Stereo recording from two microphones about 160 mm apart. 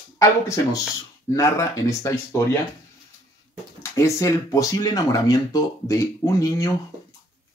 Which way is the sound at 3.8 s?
20° left (ahead or behind).